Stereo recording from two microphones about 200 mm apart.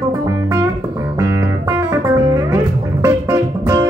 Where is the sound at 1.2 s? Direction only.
15° right (ahead or behind).